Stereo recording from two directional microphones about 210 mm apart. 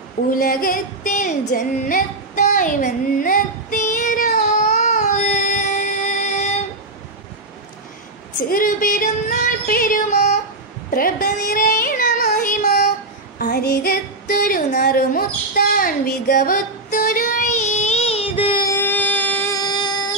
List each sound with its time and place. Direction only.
0.3 s female singing: 40° left (ahead or behind)
8.5 s a sound: 40° left (ahead or behind)
9.7 s yodeling: 40° left (ahead or behind)
10.9 s child singing: 45° left (ahead or behind)
13.4 s female singing: 50° left (ahead or behind); by 20.1 s 20° left (ahead or behind)